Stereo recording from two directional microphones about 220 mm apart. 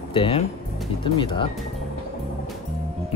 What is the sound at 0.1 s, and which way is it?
Speech, 25° left (ahead or behind).